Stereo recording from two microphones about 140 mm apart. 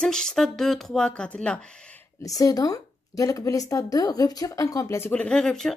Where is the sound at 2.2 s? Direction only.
25° left (ahead or behind).